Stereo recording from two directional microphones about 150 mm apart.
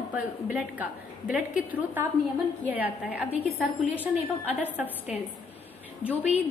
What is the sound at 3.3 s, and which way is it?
Speech, 45° left (ahead or behind).